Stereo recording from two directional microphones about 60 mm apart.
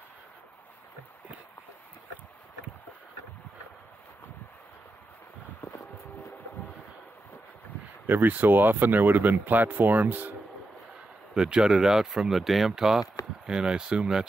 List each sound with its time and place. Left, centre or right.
8.1 s speech: right
11.3 s speech: centre
13.0 s a sound: left
13.5 s speech: centre